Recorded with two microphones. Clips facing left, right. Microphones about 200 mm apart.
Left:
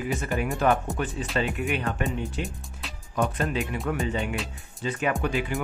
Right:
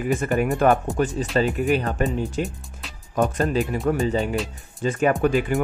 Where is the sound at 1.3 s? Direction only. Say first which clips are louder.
Right 7 dB; 40° right (ahead or behind).